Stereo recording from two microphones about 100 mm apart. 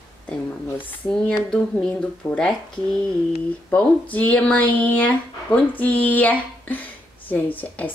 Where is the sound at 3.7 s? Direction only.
15° left (ahead or behind).